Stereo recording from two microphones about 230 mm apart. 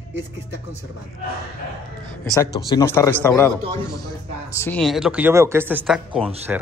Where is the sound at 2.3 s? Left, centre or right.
Centre.